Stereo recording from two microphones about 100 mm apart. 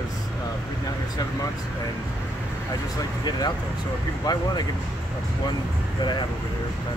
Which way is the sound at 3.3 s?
45° left (ahead or behind).